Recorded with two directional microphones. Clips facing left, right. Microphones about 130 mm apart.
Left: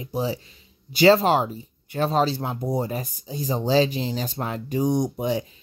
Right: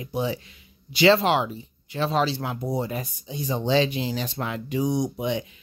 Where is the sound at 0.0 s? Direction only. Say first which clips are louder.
Left 1 dB; 35° left (ahead or behind); by 5.1 s 50° left (ahead or behind).